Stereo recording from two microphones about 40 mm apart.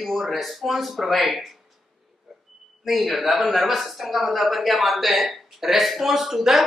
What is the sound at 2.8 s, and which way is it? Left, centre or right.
A man's voice, centre.